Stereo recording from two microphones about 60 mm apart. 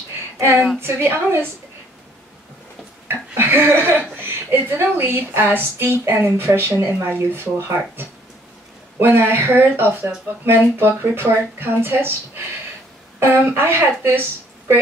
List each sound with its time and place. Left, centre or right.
0.4 s a woman's voice: right
3.1 s speech: right
8.9 s speech: right
13.3 s speech: right